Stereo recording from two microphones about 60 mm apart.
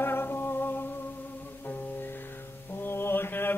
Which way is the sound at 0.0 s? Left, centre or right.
Left.